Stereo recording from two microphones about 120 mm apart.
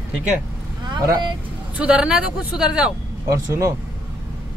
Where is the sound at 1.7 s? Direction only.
10° right (ahead or behind).